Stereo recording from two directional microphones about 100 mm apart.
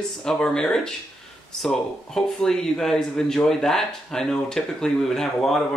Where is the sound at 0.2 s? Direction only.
5° left (ahead or behind).